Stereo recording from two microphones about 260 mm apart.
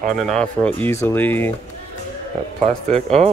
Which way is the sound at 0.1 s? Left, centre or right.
Centre.